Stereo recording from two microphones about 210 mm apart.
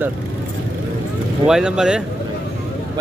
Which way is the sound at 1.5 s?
5° right (ahead or behind).